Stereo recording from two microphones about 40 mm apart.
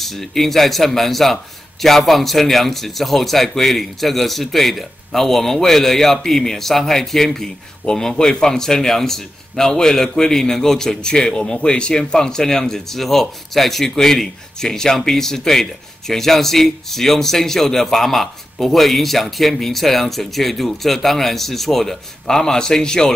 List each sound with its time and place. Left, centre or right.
0.0 s a man's voice: centre